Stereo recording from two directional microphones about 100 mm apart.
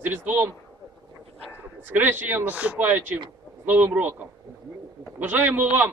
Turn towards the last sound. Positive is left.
turn(degrees=-20)  # may be behind; listen again after turning